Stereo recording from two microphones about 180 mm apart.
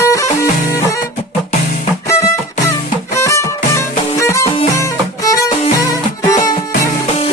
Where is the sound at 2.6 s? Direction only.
15° left (ahead or behind).